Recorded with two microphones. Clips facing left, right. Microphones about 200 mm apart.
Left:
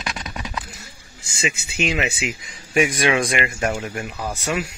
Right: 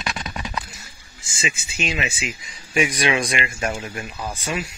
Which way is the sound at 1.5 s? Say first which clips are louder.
Left 4 dB; 60° left (ahead or behind).